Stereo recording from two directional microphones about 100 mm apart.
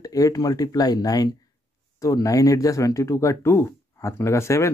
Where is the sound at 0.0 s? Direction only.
35° left (ahead or behind).